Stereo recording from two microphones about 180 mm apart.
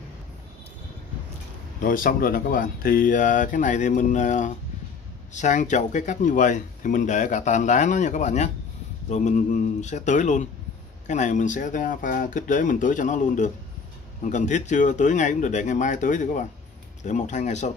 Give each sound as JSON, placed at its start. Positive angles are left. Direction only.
{"t": 1.8, "sound": "speech", "side_deg": 50}